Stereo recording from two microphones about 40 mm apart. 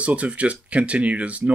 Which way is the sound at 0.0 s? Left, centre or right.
Right.